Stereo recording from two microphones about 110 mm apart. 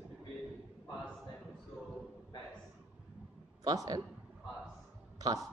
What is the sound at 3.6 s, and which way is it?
Speech, 35° right (ahead or behind).